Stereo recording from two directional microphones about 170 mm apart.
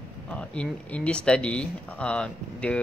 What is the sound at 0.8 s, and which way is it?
Speech, 5° left (ahead or behind).